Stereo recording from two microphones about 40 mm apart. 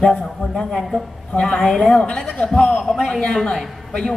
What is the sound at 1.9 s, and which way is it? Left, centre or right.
Speech, left.